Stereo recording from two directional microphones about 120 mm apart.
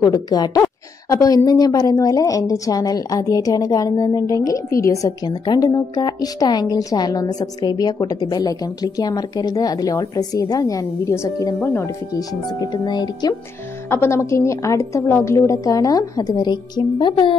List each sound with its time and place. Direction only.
0.0 s a woman's voice: 35° left (ahead or behind)
11.6 s speech: 15° left (ahead or behind)
12.1 s a woman's voice: 30° left (ahead or behind)
13.8 s a woman's voice: 20° left (ahead or behind); by 17.4 s 45° left (ahead or behind)